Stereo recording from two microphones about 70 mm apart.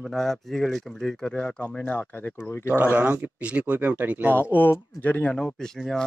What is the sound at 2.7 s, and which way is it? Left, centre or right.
Speech, right.